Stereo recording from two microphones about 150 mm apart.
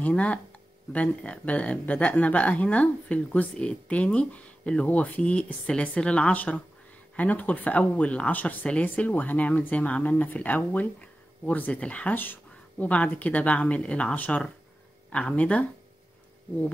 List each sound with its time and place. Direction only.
0.0 s speech: 10° left (ahead or behind)